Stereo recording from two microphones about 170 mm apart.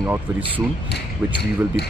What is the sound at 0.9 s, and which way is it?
Speech, 75° left (ahead or behind).